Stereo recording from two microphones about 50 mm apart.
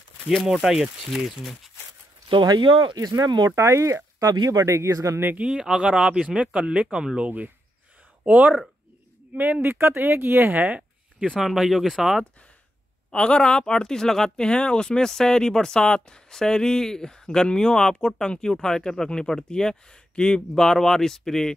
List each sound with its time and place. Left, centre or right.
0.3 s speech: centre
3.5 s speech: right
5.4 s speech: centre
7.2 s speech: right
9.6 s speech: right
10.5 s a sound: right
11.4 s speech: centre
13.1 s speech: centre